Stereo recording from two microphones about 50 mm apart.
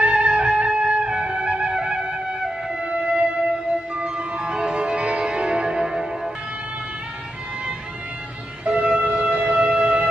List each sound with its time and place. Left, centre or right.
0.0 s music: right
8.6 s music: right